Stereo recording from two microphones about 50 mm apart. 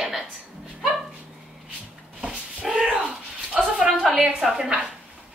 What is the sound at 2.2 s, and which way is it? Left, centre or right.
Dog, centre.